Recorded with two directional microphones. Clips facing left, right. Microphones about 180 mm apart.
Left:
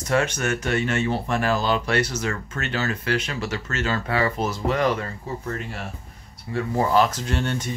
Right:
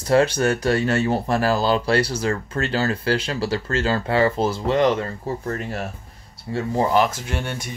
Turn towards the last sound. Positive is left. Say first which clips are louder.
# left 2 dB
turn(degrees=-10)  # may be behind; listen again after turning